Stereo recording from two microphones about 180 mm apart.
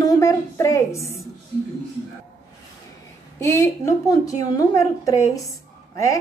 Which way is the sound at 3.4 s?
15° left (ahead or behind).